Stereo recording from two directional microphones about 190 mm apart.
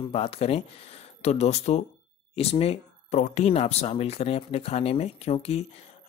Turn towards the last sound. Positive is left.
turn(degrees=35)  # may be behind; listen again after turning